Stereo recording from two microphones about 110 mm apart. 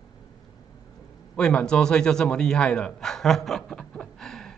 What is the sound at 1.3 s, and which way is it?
A man's voice, 10° left (ahead or behind).